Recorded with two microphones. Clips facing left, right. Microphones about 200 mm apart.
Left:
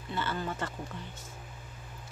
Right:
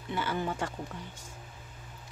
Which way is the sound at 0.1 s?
10° right (ahead or behind).